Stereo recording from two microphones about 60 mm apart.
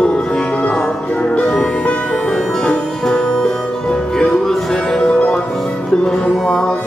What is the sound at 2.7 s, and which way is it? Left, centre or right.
Music, centre.